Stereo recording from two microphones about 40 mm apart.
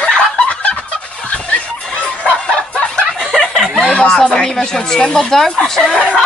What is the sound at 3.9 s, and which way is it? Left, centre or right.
Speech, left.